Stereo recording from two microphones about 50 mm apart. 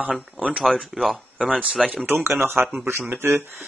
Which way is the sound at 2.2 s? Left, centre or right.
Right.